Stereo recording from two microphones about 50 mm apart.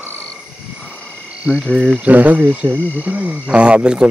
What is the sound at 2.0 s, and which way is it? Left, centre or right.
Speech, right.